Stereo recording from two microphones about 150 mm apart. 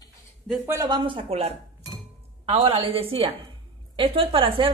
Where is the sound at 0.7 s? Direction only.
25° right (ahead or behind).